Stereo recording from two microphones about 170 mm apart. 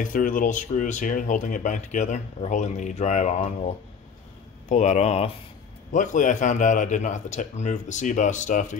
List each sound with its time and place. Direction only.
0.0 s speech: 50° left (ahead or behind)
5.9 s speech: 50° left (ahead or behind)